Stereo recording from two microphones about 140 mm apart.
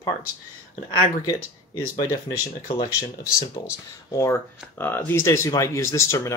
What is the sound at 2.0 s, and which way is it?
Speech, 25° left (ahead or behind).